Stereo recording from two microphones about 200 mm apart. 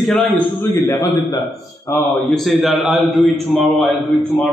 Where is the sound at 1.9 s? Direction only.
5° left (ahead or behind).